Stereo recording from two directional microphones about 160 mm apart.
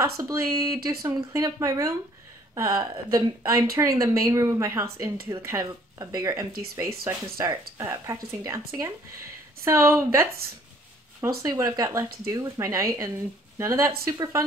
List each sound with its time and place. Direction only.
0.0 s a woman's voice: 20° right (ahead or behind)
11.4 s speech: 20° right (ahead or behind)